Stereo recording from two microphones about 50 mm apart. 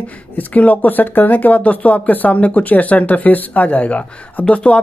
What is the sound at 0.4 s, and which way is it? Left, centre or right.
Speech, left.